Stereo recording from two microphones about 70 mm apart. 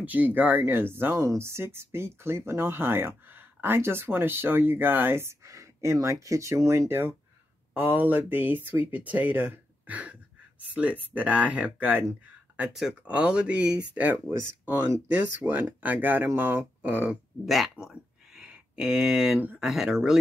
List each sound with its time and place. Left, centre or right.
0.0 s speech: right
1.2 s speech: right
13.0 s speech: centre
15.1 s speech: right
17.5 s speech: centre